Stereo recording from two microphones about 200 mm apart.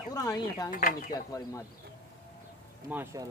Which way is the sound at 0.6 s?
45° left (ahead or behind).